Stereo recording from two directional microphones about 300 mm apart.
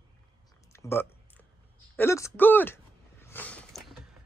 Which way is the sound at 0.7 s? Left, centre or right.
Centre.